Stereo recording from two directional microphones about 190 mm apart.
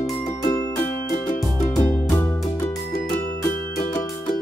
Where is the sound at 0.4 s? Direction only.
20° left (ahead or behind).